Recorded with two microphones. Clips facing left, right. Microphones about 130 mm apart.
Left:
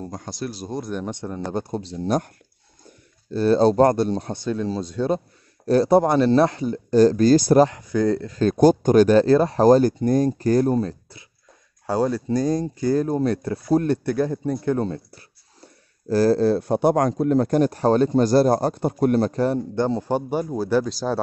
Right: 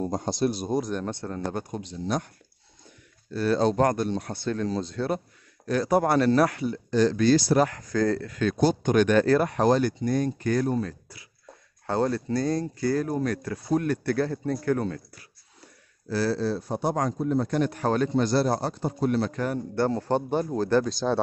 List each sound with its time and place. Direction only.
0.0 s speech: 25° right (ahead or behind)
0.9 s speech: 15° left (ahead or behind)
1.6 s speech: 30° left (ahead or behind)
3.3 s speech: 30° left (ahead or behind)
4.4 s speech: 15° left (ahead or behind)
5.7 s speech: 30° left (ahead or behind)
7.6 s speech: 20° left (ahead or behind)
8.4 s speech: 45° left (ahead or behind); by 11.2 s 25° left (ahead or behind)
11.8 s speech: 10° left (ahead or behind); by 13.9 s 30° left (ahead or behind)
14.0 s speech: 15° left (ahead or behind)
16.1 s a man's voice: 45° left (ahead or behind); by 17.5 s 70° left (ahead or behind)
17.5 s a man's voice: 40° left (ahead or behind)
19.3 s speech: 30° left (ahead or behind)
19.7 s speech: 20° left (ahead or behind)